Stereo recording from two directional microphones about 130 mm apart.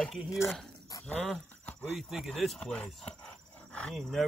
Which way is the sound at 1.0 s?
10° left (ahead or behind).